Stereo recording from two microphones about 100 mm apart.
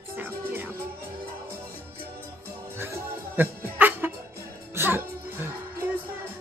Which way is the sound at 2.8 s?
25° right (ahead or behind).